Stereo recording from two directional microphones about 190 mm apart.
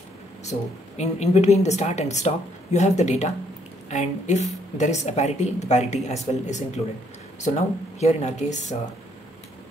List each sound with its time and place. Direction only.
0.5 s a woman's voice: 35° left (ahead or behind)